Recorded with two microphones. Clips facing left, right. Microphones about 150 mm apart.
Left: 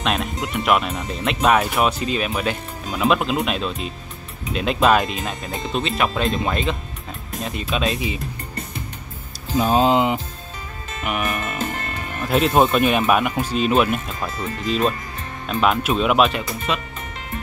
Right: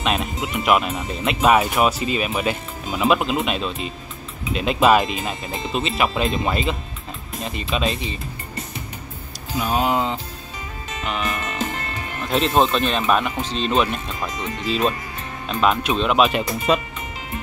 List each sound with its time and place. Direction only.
0.0 s speech: 5° right (ahead or behind)
9.6 s speech: 35° left (ahead or behind)
9.9 s speech: 15° left (ahead or behind)
11.1 s music: 10° left (ahead or behind)
12.2 s speech: 10° left (ahead or behind)
16.7 s speech: 40° right (ahead or behind)